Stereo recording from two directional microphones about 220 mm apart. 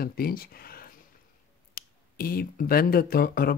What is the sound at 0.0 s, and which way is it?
Speech, 45° left (ahead or behind).